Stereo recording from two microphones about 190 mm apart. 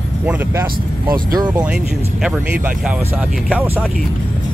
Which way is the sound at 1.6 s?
5° right (ahead or behind).